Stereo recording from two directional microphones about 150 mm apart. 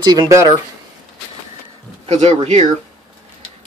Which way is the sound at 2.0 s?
35° right (ahead or behind).